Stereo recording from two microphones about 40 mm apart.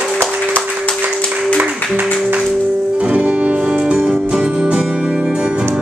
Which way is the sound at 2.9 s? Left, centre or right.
Right.